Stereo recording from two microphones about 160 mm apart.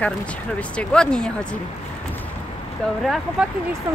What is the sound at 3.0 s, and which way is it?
Speech, centre (ahead or behind).